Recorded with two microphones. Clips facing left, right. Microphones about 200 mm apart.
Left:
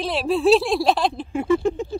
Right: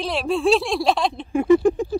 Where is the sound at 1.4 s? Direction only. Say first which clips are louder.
Right 5 dB; 15° right (ahead or behind).